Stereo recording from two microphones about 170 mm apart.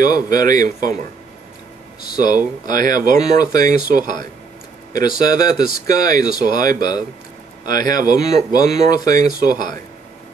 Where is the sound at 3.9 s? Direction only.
60° right (ahead or behind).